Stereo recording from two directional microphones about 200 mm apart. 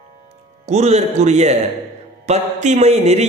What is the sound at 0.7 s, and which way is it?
A man's voice, 30° right (ahead or behind).